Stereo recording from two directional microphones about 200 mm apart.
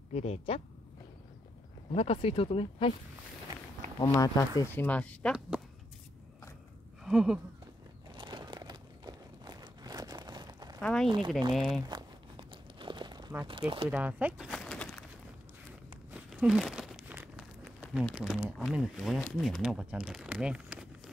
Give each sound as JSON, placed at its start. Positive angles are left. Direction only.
{"t": 0.1, "sound": "speech", "side_deg": 30}
{"t": 1.9, "sound": "speech", "side_deg": 30}
{"t": 4.0, "sound": "speech", "side_deg": 15}
{"t": 7.0, "sound": "a sound", "side_deg": 0}
{"t": 8.1, "sound": "a sound", "side_deg": -25}
{"t": 10.8, "sound": "speech", "side_deg": 5}
{"t": 11.1, "sound": "speech", "side_deg": -25}
{"t": 11.5, "sound": "speech", "side_deg": 0}
{"t": 11.8, "sound": "crumpling", "side_deg": -20}
{"t": 13.5, "sound": "speech", "side_deg": -25}
{"t": 13.8, "sound": "a sound", "side_deg": -10}
{"t": 16.1, "sound": "crumpling", "side_deg": -5}
{"t": 17.7, "sound": "speech", "side_deg": -5}